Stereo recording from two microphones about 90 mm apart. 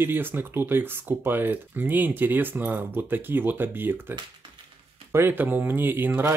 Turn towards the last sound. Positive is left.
turn(degrees=-20)  # may be behind; listen again after turning